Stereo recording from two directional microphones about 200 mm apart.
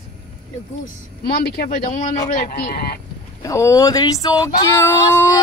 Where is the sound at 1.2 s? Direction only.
55° left (ahead or behind).